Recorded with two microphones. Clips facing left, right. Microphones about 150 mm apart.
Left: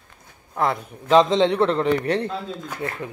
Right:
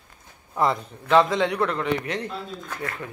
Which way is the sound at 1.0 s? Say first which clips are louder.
Left 3 dB; 20° left (ahead or behind).